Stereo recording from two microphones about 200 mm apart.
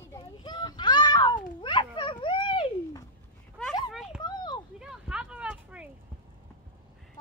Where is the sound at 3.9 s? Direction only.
Centre (ahead or behind).